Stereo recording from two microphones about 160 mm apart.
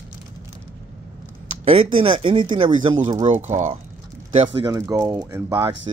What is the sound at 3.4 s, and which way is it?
Speech, 45° right (ahead or behind).